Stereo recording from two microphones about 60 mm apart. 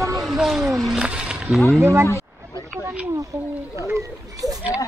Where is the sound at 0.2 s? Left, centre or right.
Centre.